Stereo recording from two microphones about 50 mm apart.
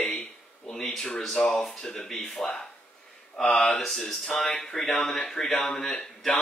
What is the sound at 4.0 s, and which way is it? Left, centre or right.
Speech, centre.